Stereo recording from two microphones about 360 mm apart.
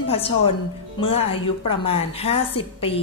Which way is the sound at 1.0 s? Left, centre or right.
Centre.